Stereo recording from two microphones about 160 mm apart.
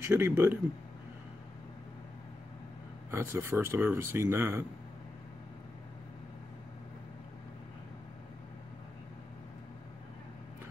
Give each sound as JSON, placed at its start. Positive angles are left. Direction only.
{"t": 0.0, "sound": "speech", "side_deg": -15}
{"t": 3.1, "sound": "speech", "side_deg": -15}